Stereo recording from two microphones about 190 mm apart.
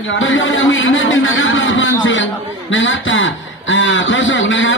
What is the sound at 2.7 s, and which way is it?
A man's voice, 85° left.